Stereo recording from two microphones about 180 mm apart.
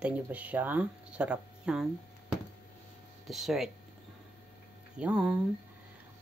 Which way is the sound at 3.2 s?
Centre (ahead or behind).